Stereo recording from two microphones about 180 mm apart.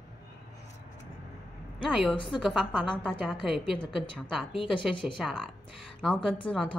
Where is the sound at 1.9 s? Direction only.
5° right (ahead or behind).